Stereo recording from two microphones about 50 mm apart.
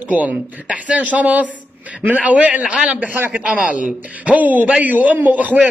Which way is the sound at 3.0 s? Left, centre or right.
Right.